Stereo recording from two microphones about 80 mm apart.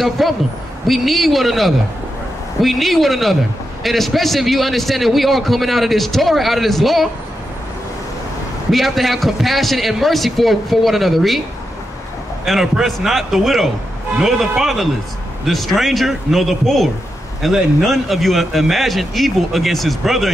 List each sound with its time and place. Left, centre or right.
0.2 s a man's voice: centre
8.6 s a man's voice: centre
12.4 s a man's voice: centre